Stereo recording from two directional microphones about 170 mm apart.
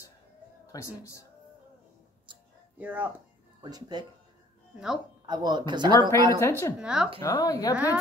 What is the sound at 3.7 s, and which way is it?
Speech, 25° right (ahead or behind).